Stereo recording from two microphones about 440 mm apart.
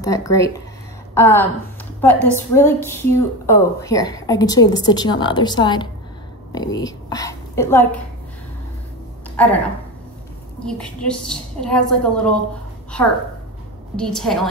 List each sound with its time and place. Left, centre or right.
0.0 s a woman's voice: centre
10.6 s a woman's voice: centre
13.9 s a woman's voice: centre